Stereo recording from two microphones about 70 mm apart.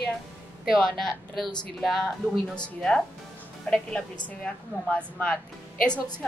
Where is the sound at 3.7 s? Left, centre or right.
Centre.